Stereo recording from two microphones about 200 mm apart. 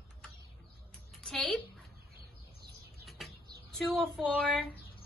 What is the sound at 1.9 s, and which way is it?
Bird, 50° right (ahead or behind).